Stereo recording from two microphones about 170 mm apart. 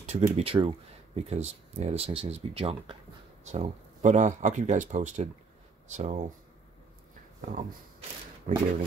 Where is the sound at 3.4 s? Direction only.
45° right (ahead or behind).